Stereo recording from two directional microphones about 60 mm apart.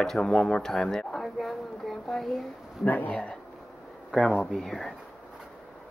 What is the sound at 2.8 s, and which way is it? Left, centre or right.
Speech, left.